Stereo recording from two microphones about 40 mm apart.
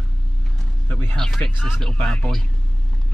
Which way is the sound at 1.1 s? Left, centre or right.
Centre.